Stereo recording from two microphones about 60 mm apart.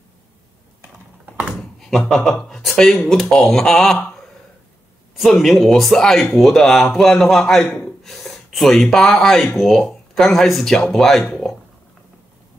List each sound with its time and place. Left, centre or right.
1.2 s typing: right
1.8 s speech: centre
5.1 s a man's voice: centre